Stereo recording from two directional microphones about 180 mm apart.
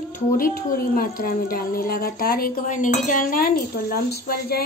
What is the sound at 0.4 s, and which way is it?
A woman's voice, 55° left (ahead or behind).